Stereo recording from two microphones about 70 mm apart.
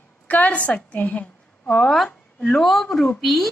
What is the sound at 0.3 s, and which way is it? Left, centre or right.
A woman's voice, left.